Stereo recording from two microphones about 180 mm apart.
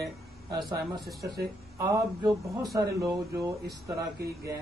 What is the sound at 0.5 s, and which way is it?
Speech, 25° right (ahead or behind).